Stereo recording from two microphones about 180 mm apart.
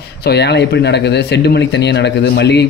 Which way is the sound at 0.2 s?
70° left (ahead or behind).